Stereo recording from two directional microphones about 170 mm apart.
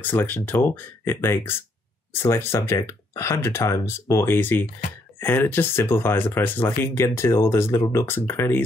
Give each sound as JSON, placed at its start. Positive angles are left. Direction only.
{"t": 0.0, "sound": "speech", "side_deg": 10}